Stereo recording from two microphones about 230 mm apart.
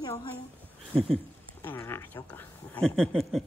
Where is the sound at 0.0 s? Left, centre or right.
Centre.